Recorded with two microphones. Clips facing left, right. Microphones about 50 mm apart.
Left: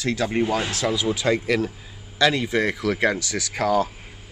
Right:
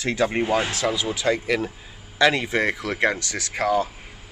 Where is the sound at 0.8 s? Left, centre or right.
Centre.